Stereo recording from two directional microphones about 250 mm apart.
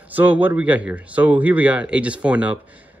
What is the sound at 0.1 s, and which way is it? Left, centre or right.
Speech, centre.